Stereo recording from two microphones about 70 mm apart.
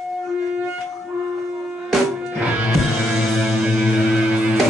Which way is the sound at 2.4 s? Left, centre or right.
Centre.